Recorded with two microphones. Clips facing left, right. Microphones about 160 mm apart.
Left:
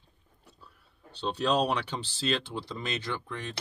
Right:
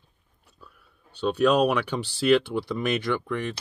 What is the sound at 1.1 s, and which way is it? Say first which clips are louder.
Speech: right 7 dB; 55° right (ahead or behind).